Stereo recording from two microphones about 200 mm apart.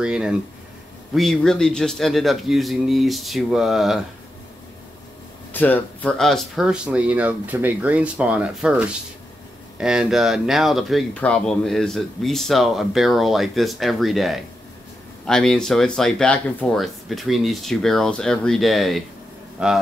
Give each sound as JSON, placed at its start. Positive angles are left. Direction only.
{"t": 0.0, "sound": "speech", "side_deg": -5}
{"t": 5.5, "sound": "speech", "side_deg": 10}